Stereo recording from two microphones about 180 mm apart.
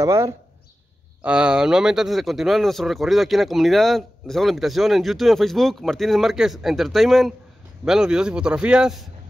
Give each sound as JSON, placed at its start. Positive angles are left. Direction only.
{"t": 0.0, "sound": "speech", "side_deg": -15}
{"t": 1.2, "sound": "speech", "side_deg": -5}